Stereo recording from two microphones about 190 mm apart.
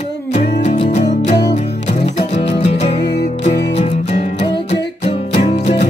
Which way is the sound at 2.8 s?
65° left (ahead or behind).